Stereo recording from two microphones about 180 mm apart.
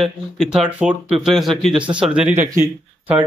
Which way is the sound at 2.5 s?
15° right (ahead or behind).